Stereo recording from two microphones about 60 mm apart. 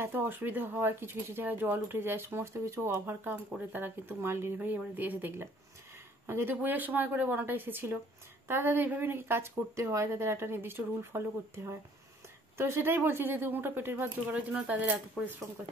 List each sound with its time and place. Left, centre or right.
0.0 s speech: right
3.7 s speech: right
4.6 s speech: right
6.2 s speech: right
6.5 s speech: right
9.8 s speech: right
14.3 s speech: right